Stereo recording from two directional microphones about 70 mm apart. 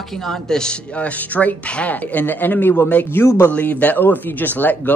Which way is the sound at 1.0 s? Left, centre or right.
Left.